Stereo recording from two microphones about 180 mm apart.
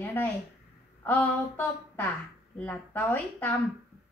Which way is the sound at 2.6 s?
10° left (ahead or behind).